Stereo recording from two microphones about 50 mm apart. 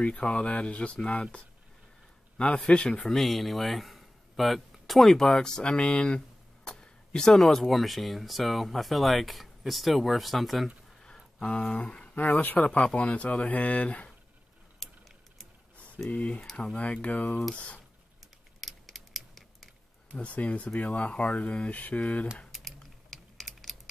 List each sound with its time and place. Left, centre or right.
0.0 s speech: centre
2.3 s speech: left
3.1 s speech: centre
11.3 s speech: centre
12.2 s speech: left
14.8 s a sound: centre
16.1 s speech: left
18.6 s scissors: centre
20.1 s speech: left
22.5 s typing: centre